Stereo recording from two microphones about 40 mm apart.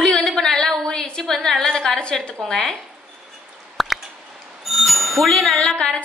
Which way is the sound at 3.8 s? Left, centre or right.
Centre.